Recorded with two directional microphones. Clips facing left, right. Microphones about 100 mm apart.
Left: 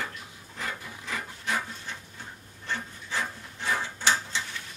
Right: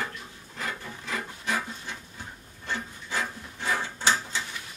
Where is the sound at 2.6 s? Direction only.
15° right (ahead or behind).